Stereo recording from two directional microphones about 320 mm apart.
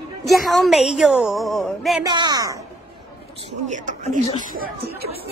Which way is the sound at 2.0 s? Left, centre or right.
Centre.